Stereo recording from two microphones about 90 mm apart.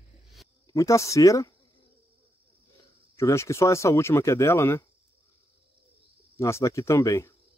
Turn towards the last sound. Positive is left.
turn(degrees=35)  # may be behind; listen again after turning